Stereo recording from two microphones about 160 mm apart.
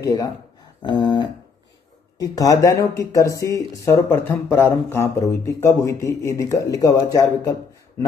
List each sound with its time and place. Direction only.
0.0 s speech: 25° left (ahead or behind)